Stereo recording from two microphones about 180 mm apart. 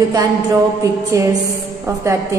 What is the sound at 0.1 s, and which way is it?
A woman's voice, 20° right (ahead or behind).